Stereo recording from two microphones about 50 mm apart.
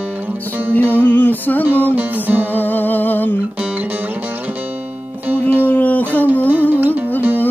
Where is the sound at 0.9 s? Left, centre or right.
Left.